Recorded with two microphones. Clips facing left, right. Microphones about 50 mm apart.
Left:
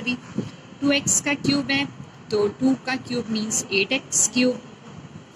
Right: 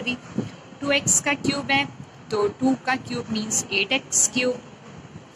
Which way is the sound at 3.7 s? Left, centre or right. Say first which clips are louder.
Left 1 dB; centre.